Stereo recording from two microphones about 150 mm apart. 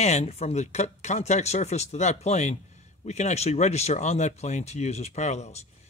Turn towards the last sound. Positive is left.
turn(degrees=45)  # may be behind; listen again after turning